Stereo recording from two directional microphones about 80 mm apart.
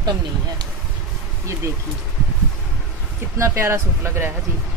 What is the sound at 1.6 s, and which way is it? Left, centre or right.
Speech, right.